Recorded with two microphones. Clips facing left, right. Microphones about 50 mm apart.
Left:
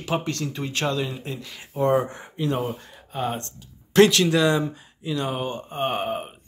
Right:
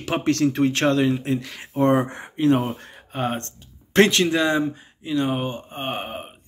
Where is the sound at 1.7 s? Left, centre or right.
Right.